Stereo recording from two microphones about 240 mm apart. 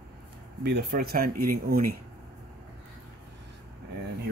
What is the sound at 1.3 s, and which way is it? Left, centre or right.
Speech, right.